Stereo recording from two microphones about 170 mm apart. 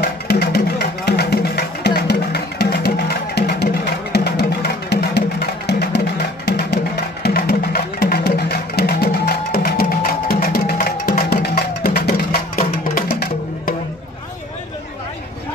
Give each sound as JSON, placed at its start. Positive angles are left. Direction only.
{"t": 0.0, "sound": "music", "side_deg": 70}
{"t": 7.2, "sound": "music", "side_deg": 60}